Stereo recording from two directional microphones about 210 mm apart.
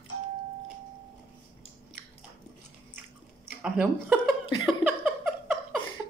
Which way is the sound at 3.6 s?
5° right (ahead or behind).